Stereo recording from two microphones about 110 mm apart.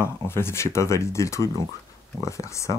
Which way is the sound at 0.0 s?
25° left (ahead or behind).